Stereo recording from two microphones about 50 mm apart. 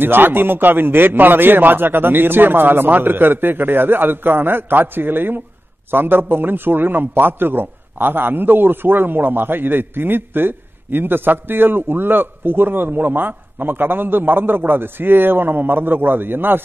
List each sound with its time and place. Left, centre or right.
0.0 s a man's voice: right